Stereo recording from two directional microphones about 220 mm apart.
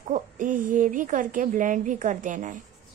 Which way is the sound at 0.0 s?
35° right (ahead or behind).